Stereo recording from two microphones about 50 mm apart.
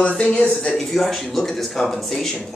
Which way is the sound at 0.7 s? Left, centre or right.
Centre.